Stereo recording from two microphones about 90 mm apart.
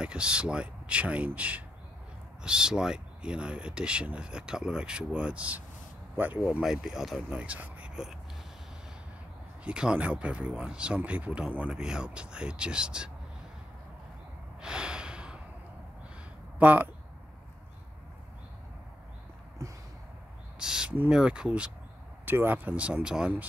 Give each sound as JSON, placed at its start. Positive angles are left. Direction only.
{"t": 0.0, "sound": "speech", "side_deg": -10}
{"t": 6.6, "sound": "speech", "side_deg": -5}
{"t": 7.2, "sound": "speech", "side_deg": -15}
{"t": 9.7, "sound": "speech", "side_deg": -10}
{"t": 14.6, "sound": "snort", "side_deg": -10}
{"t": 16.5, "sound": "speech", "side_deg": -20}
{"t": 20.5, "sound": "speech", "side_deg": -10}
{"t": 22.2, "sound": "speech", "side_deg": -20}